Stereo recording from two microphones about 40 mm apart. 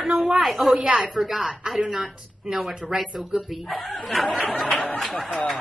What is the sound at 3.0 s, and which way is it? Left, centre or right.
Speech, centre.